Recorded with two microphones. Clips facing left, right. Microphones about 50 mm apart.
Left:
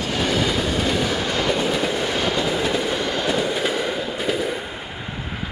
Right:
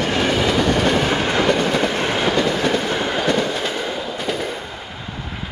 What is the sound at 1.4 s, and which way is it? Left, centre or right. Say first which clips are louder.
Train: right 3 dB; right.